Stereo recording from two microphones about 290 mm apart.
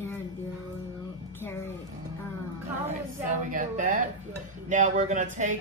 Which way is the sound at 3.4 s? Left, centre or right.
Right.